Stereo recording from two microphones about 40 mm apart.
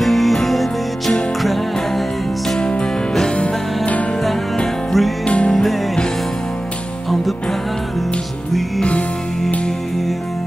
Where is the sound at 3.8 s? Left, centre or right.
Left.